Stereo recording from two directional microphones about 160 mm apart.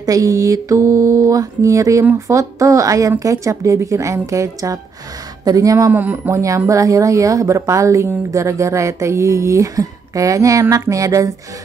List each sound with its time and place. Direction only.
0.0 s speech: 20° right (ahead or behind)